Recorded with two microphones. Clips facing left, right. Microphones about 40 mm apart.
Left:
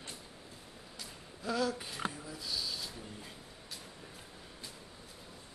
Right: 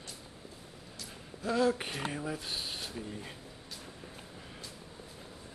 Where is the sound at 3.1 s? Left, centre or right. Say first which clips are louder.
Right 5 dB; right.